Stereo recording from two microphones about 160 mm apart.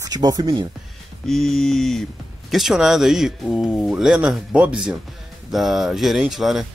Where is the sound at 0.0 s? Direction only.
25° right (ahead or behind).